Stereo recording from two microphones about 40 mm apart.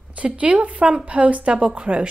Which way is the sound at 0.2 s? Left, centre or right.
Right.